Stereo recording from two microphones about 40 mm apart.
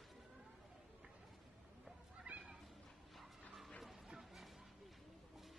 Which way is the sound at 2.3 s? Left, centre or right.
Right.